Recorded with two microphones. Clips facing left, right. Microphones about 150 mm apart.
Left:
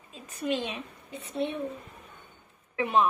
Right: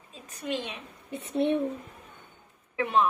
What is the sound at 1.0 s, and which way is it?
Speech, 65° right (ahead or behind).